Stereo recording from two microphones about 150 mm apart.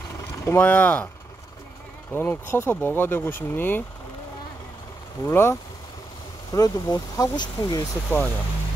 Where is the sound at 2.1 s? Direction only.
15° left (ahead or behind).